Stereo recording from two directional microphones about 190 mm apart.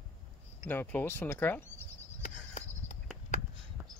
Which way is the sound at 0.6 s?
10° left (ahead or behind).